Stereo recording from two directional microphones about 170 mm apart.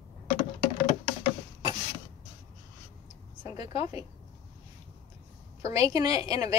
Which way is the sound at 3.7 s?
35° left (ahead or behind).